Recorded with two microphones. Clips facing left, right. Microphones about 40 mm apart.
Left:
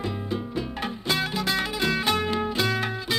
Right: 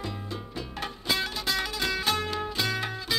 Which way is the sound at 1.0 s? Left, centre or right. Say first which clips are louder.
Left 3 dB; centre.